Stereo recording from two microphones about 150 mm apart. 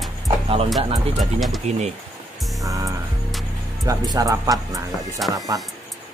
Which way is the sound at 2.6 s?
20° right (ahead or behind).